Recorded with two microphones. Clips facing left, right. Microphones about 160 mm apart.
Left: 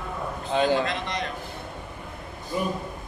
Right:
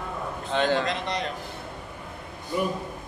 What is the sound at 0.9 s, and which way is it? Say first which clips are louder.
Speech: right 1 dB; 35° right (ahead or behind).